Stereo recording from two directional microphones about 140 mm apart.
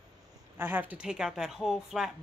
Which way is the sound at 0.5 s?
15° right (ahead or behind).